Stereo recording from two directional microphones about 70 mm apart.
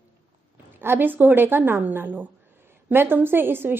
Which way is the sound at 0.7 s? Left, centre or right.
Right.